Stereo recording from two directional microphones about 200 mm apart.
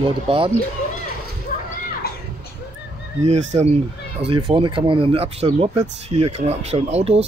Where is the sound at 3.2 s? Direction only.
35° right (ahead or behind).